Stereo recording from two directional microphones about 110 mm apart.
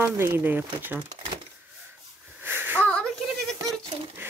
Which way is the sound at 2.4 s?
20° right (ahead or behind).